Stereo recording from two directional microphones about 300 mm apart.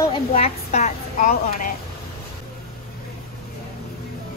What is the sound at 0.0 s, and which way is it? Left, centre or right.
A woman's voice, centre.